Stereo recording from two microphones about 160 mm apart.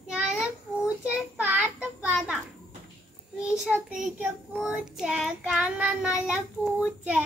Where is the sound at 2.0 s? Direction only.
5° right (ahead or behind).